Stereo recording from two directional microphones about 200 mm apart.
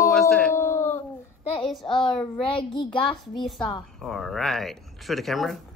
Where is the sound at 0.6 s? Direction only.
10° left (ahead or behind).